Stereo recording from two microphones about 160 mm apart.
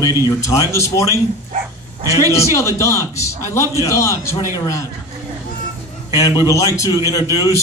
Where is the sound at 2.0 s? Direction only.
20° right (ahead or behind).